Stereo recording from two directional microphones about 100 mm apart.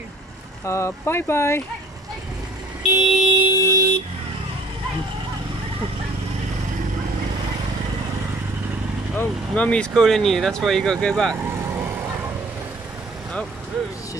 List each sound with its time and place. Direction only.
0.7 s speech: 30° left (ahead or behind)
3.1 s vehicle: 10° right (ahead or behind)
3.6 s vehicle: 35° right (ahead or behind)
9.1 s speech: 15° left (ahead or behind)